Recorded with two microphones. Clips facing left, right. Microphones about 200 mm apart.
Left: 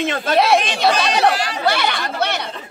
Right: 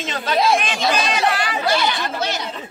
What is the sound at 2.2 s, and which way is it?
Chatter, 60° left (ahead or behind).